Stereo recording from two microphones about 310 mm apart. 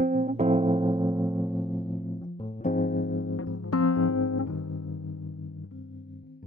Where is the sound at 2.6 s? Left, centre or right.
Left.